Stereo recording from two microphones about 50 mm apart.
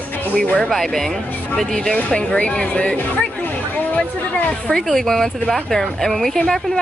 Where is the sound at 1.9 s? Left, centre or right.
Centre.